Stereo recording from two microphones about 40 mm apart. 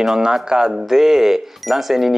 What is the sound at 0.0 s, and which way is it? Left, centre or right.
Speech, centre.